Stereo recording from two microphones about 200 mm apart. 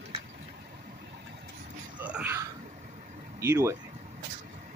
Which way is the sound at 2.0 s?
10° right (ahead or behind).